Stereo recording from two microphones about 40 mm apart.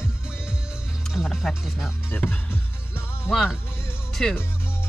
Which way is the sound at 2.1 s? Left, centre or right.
Left.